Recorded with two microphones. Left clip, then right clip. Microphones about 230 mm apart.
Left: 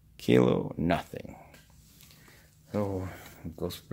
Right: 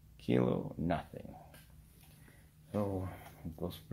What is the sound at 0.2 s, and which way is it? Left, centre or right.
Speech, left.